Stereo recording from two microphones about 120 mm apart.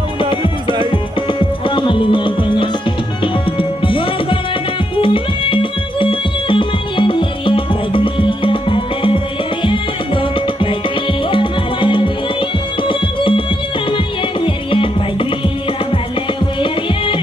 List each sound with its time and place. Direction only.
0.2 s music: 45° left (ahead or behind)
16.5 s music: 45° left (ahead or behind)